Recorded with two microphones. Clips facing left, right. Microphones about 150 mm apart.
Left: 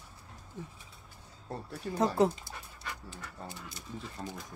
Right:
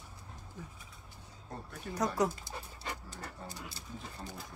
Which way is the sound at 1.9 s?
30° left (ahead or behind).